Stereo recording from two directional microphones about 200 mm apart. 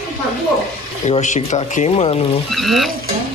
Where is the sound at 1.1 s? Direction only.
35° left (ahead or behind).